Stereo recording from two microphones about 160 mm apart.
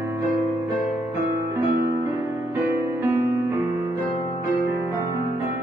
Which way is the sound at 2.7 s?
15° right (ahead or behind).